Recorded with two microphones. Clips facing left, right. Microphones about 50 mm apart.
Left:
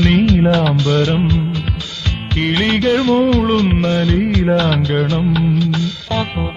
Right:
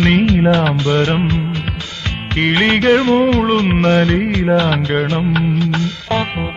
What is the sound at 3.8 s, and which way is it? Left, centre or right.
Music, right.